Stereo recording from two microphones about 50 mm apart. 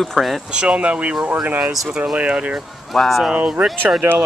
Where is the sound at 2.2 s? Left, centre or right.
Right.